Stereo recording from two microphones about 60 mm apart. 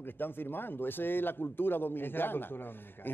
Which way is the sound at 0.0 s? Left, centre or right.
Left.